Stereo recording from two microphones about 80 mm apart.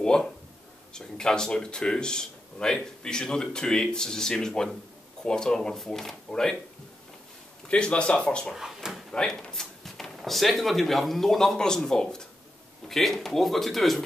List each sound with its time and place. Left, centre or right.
0.0 s a sound: centre
0.9 s a man's voice: centre
7.6 s a man's voice: centre
8.5 s speech: centre
9.1 s speech: centre